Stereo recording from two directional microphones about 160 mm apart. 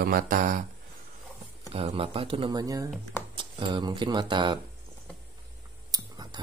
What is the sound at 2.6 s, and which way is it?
Speech, 20° right (ahead or behind).